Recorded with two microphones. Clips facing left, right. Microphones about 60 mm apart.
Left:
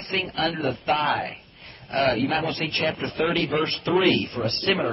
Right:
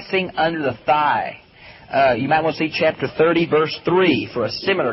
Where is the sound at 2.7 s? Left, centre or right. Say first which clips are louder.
Right 7 dB; right.